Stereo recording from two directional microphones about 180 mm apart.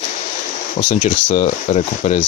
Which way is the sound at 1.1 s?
40° left (ahead or behind).